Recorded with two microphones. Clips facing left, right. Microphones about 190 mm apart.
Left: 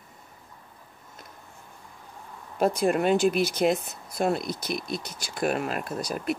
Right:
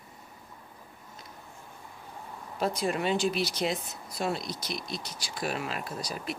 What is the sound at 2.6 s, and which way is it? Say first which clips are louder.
Speech: left 6 dB; 50° left (ahead or behind).